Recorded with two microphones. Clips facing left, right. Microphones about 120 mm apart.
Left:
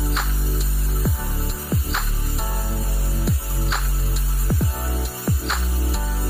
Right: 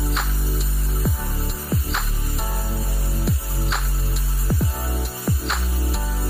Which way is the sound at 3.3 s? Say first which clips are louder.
Even; centre (ahead or behind).